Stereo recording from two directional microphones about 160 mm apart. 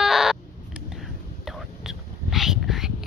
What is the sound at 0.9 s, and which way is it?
Whispering, centre (ahead or behind).